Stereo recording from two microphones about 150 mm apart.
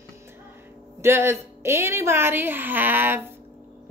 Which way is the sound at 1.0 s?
20° right (ahead or behind).